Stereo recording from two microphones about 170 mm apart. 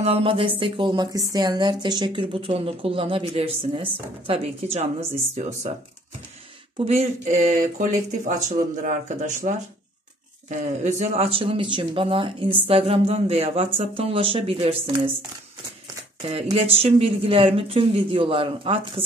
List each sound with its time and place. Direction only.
0.0 s speech: 35° right (ahead or behind)
6.8 s speech: 40° right (ahead or behind)
16.2 s speech: 35° right (ahead or behind)